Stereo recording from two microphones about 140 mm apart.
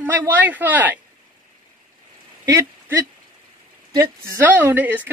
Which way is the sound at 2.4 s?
20° right (ahead or behind).